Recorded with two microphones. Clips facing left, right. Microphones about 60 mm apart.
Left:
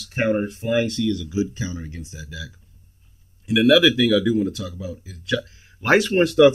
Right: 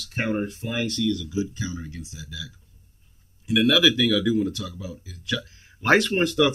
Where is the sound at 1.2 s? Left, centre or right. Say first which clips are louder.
Left 3 dB; left.